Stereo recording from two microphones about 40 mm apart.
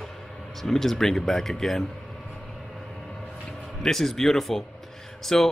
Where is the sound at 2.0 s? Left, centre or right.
Centre.